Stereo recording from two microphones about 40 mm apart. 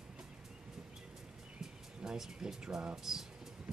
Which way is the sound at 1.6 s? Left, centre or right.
Centre.